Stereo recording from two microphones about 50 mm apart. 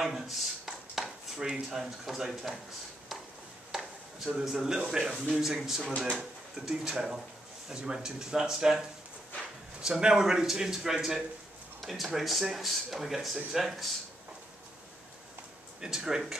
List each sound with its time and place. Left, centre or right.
0.0 s a sound: centre
1.5 s speech: centre
3.7 s a sound: centre
4.8 s speech: centre
5.9 s speech: centre
6.5 s speech: centre
15.8 s speech: centre